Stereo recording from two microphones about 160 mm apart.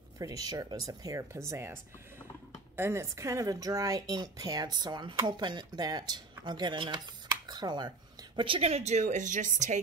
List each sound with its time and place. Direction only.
0.2 s a woman's voice: 20° right (ahead or behind); by 9.8 s 50° right (ahead or behind)